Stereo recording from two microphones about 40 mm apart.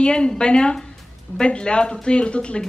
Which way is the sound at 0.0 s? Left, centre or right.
Left.